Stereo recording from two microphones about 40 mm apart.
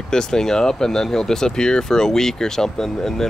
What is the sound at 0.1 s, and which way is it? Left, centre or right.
Speech, centre.